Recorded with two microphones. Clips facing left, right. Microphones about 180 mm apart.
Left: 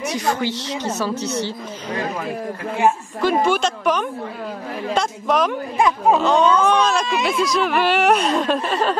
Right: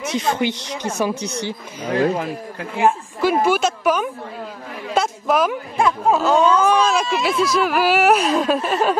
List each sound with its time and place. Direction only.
0.1 s a woman's voice: 25° right (ahead or behind)
2.8 s a woman's voice: 10° right (ahead or behind)